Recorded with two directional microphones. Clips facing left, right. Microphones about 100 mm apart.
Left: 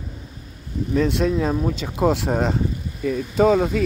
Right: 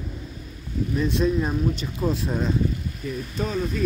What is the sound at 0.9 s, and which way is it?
Speech, 85° left.